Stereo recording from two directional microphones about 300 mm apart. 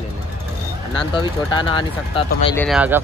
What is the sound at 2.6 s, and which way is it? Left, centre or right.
Speech, centre.